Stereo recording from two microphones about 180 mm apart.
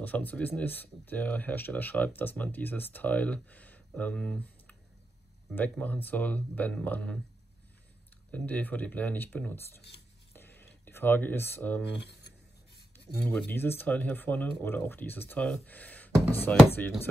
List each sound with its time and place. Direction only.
0.0 s speech: 10° left (ahead or behind)
8.3 s speech: 10° left (ahead or behind)
9.8 s speech: 65° left (ahead or behind)
10.3 s a sound: 10° left (ahead or behind)
12.9 s speech: 5° left (ahead or behind)